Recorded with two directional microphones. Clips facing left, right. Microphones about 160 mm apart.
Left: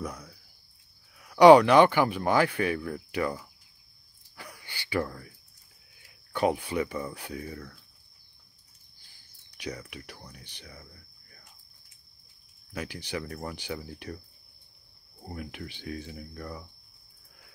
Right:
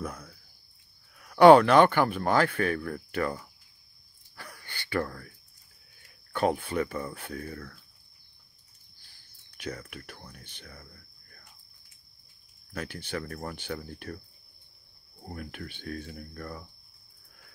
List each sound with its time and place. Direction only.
0.0 s a sound: 10° left (ahead or behind)
1.1 s speech: 10° left (ahead or behind)
4.4 s a sound: 15° left (ahead or behind)
6.3 s speech: 15° left (ahead or behind)
9.6 s speech: 15° left (ahead or behind)
10.6 s cricket: 10° left (ahead or behind)
13.1 s speech: 10° left (ahead or behind)
15.2 s speech: 10° left (ahead or behind)